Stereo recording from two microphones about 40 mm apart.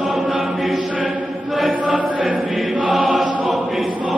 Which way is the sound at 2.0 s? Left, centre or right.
Right.